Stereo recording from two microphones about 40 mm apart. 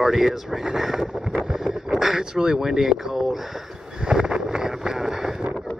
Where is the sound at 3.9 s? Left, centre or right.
Centre.